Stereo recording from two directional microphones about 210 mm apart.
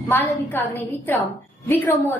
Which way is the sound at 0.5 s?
10° left (ahead or behind).